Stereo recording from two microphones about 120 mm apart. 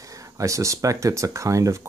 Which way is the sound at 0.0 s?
25° right (ahead or behind).